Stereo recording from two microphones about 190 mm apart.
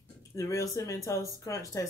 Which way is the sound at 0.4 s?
15° left (ahead or behind).